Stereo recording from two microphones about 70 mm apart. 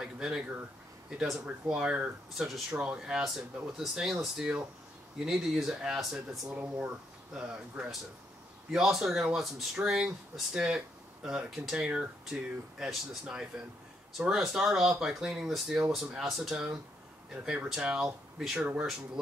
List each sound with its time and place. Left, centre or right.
0.0 s speech: centre
2.3 s speech: centre
6.5 s speech: right
11.8 s speech: centre